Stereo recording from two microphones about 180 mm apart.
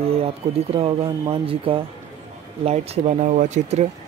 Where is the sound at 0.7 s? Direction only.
30° right (ahead or behind).